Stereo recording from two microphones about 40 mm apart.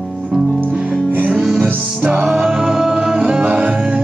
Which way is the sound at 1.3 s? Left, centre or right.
Centre.